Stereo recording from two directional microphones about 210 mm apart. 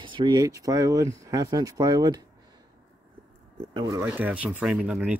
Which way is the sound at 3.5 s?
20° right (ahead or behind).